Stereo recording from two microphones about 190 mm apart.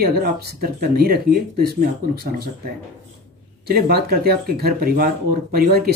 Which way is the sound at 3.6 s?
55° right (ahead or behind).